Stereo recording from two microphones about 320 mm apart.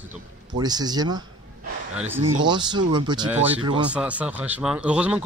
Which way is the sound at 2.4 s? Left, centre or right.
Centre.